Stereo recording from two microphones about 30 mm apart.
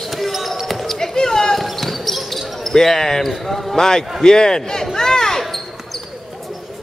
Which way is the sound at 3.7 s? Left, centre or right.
Centre.